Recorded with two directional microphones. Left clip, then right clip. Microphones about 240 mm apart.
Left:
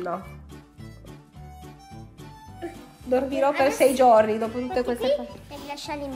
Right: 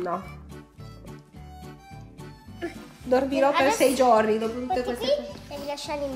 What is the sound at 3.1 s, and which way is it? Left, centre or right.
A woman's voice, centre.